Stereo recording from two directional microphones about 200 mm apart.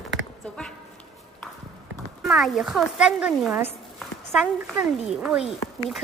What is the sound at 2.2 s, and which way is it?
Speech, centre (ahead or behind).